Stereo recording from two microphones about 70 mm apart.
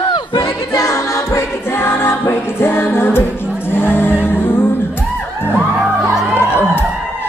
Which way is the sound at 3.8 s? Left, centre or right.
Left.